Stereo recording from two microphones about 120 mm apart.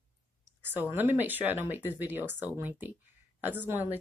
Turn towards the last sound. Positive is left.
turn(degrees=-15)  # may be behind; listen again after turning